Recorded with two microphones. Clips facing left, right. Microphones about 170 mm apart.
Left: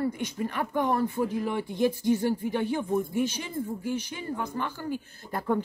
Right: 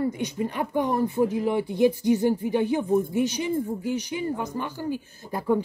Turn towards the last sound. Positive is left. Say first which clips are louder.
# right 4 dB
turn(degrees=-10)  # may be behind; listen again after turning